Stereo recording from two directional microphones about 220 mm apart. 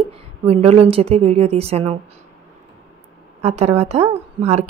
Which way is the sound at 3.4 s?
30° right (ahead or behind).